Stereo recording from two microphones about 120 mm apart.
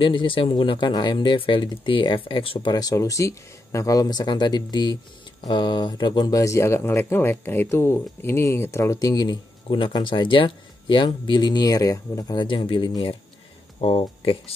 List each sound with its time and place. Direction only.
0.0 s speech: 45° left (ahead or behind)
2.7 s speech: 30° left (ahead or behind)
13.7 s speech: 50° left (ahead or behind)